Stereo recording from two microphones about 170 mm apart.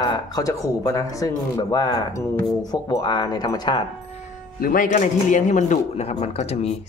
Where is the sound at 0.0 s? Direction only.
25° left (ahead or behind).